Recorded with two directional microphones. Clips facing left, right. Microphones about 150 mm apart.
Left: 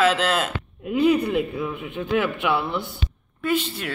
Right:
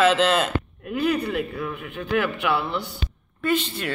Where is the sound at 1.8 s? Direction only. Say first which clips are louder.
Left 1 dB; 15° left (ahead or behind).